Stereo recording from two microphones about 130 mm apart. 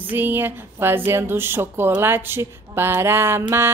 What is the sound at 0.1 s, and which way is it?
Speech, 15° right (ahead or behind).